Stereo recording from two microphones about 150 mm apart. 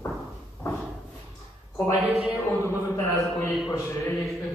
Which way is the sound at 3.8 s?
20° left (ahead or behind).